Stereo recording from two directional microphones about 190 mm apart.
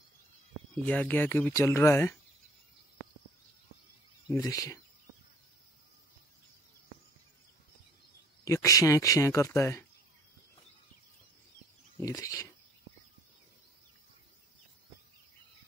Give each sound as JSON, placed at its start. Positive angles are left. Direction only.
{"t": 0.8, "sound": "speech", "side_deg": 10}
{"t": 4.3, "sound": "speech", "side_deg": 20}
{"t": 8.5, "sound": "speech", "side_deg": 15}
{"t": 12.0, "sound": "speech", "side_deg": 15}